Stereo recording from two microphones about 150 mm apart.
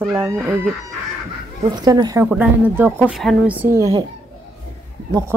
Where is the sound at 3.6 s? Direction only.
20° right (ahead or behind).